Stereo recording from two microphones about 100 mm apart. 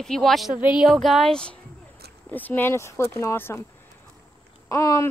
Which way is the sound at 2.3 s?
20° left (ahead or behind).